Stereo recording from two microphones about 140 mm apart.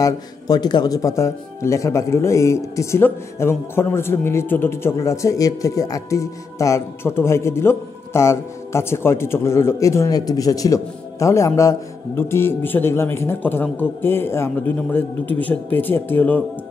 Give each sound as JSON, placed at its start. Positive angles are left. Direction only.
{"t": 0.0, "sound": "a man's voice", "side_deg": 30}